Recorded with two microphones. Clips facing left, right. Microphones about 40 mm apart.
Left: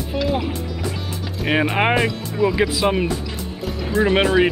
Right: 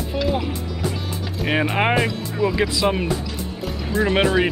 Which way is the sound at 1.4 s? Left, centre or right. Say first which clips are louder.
Left 2 dB; centre.